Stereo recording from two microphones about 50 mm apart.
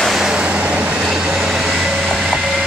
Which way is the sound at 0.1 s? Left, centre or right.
Centre.